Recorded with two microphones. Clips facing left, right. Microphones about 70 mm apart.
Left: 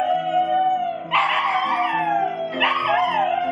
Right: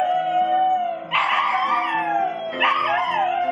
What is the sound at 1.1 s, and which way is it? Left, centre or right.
Music, centre.